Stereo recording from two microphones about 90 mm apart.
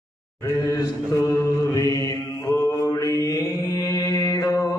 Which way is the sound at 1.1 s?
35° left (ahead or behind).